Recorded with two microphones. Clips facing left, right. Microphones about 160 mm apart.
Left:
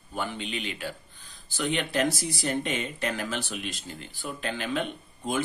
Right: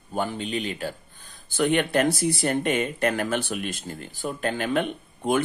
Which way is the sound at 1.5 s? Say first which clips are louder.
Right 7 dB; 55° right (ahead or behind).